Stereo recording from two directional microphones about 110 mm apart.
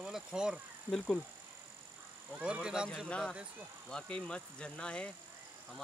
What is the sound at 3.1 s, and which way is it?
Speech, 10° left (ahead or behind).